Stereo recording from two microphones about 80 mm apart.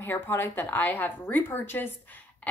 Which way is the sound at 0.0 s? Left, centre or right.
Left.